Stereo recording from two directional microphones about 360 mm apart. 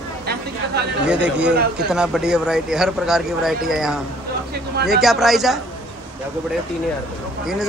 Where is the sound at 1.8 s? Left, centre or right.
Centre.